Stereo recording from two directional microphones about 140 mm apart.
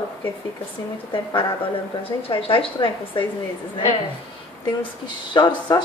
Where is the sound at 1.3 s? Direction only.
40° left (ahead or behind).